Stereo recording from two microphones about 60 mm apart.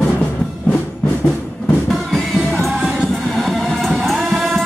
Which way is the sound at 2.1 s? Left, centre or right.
Centre.